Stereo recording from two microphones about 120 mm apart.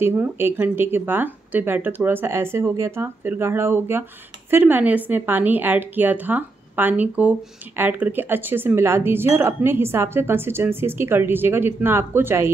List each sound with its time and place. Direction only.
0.0 s a woman's voice: 20° right (ahead or behind)